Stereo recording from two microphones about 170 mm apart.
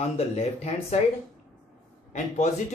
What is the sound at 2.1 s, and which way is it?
Speech, 45° left (ahead or behind).